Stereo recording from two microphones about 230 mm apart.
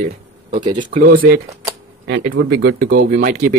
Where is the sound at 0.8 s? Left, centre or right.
Right.